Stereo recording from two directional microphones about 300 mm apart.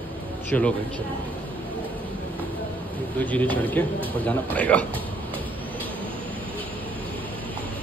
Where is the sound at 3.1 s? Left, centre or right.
Centre.